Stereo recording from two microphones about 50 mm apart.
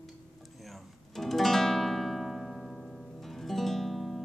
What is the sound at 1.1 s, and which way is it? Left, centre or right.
Music, centre.